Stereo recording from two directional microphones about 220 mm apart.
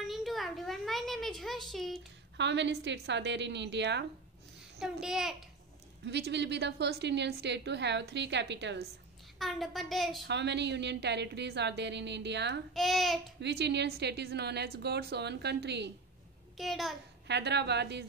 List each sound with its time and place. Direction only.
0.0 s a sound: centre (ahead or behind)
2.3 s a woman's voice: 55° right (ahead or behind)
4.7 s a child's voice: centre (ahead or behind)
6.0 s a woman's voice: 50° right (ahead or behind)
9.4 s a child's voice: centre (ahead or behind)
10.2 s a woman's voice: 50° right (ahead or behind)
12.7 s a child's voice: centre (ahead or behind)
13.4 s a woman's voice: 50° right (ahead or behind)
16.5 s a child's voice: centre (ahead or behind)
17.3 s a woman's voice: 50° right (ahead or behind)